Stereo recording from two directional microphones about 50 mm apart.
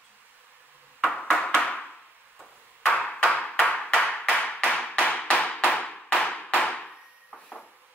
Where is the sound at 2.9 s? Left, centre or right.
Left.